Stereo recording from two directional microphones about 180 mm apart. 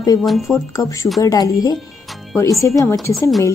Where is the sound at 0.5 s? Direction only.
20° left (ahead or behind).